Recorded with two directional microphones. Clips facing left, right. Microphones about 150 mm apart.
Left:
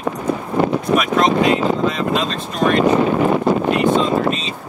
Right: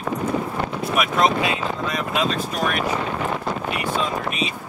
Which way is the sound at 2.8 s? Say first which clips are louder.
Left 10 dB; 40° left (ahead or behind).